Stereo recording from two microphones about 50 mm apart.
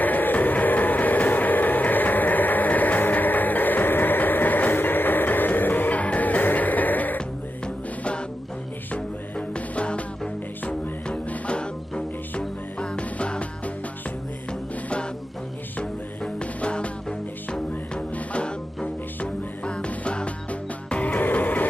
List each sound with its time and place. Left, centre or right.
0.0 s music: left
7.2 s music: left
9.8 s music: left
12.9 s music: left
16.3 s music: left
19.6 s music: left